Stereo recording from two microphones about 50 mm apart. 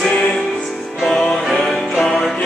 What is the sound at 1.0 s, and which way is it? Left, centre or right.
Music, centre.